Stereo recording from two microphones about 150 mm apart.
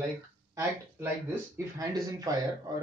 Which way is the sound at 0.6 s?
15° right (ahead or behind).